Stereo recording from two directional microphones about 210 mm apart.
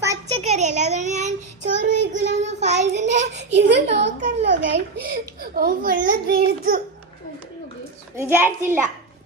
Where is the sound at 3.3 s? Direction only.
55° right (ahead or behind).